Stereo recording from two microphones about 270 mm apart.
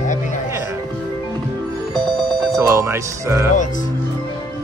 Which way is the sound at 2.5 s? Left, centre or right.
Centre.